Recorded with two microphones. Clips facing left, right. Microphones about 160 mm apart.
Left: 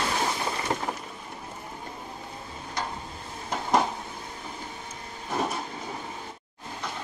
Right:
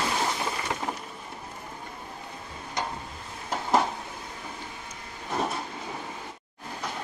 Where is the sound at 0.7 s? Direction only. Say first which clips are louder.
Left 3 dB; 35° left (ahead or behind).